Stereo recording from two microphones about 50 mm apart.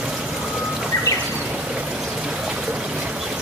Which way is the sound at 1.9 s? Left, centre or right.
Centre.